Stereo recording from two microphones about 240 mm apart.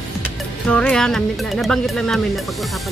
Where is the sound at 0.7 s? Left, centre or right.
Centre.